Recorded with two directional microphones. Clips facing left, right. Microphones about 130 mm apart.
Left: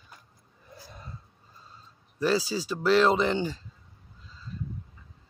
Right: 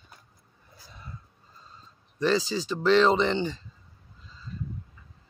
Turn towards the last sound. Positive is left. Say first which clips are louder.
# right 1 dB
turn(degrees=5)  # may be behind; listen again after turning